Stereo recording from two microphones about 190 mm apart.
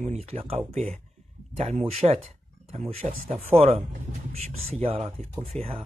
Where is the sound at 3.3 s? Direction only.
35° right (ahead or behind).